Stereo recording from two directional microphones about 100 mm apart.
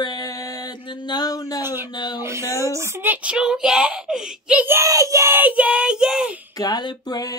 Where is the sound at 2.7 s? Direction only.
25° right (ahead or behind); by 4.7 s 10° right (ahead or behind).